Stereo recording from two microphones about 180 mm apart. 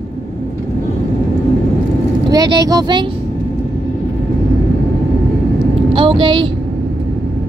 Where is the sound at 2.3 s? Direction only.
20° right (ahead or behind).